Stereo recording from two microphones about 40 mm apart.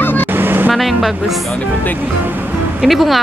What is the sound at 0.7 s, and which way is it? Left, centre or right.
Speech, centre.